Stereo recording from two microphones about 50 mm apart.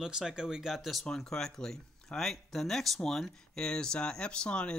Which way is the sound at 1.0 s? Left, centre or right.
Centre.